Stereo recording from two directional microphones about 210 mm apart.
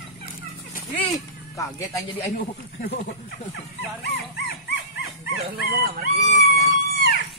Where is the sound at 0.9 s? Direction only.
15° left (ahead or behind).